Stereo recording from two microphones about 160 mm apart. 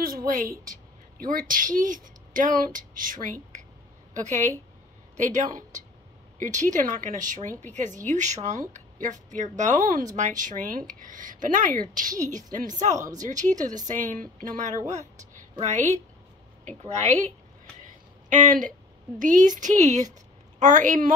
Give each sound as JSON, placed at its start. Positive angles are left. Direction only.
{"t": 0.0, "sound": "a woman's voice", "side_deg": -65}
{"t": 18.3, "sound": "speech", "side_deg": -50}